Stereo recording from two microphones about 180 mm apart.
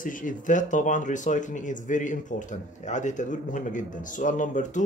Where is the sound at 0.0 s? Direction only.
45° left (ahead or behind).